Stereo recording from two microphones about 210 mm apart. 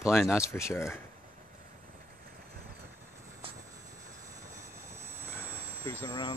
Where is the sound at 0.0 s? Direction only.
Centre (ahead or behind).